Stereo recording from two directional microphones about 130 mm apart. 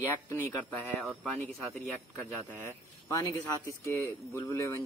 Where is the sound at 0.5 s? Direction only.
15° left (ahead or behind).